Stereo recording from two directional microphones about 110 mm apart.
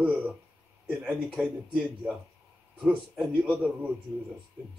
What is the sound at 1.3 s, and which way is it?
A man's voice, 10° right (ahead or behind).